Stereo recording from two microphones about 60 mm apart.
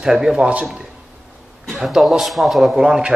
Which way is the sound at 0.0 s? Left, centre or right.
Centre.